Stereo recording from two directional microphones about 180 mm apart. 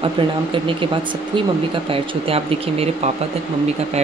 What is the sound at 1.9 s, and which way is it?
Speech, 30° right (ahead or behind).